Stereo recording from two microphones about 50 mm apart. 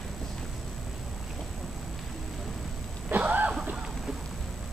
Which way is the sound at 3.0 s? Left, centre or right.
Right.